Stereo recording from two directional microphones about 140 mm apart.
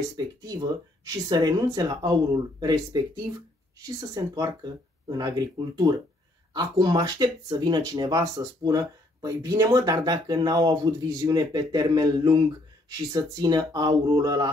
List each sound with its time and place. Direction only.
0.4 s speech: 25° right (ahead or behind)
6.5 s speech: 30° right (ahead or behind)